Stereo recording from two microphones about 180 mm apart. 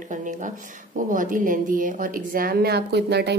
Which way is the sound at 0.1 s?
45° right (ahead or behind).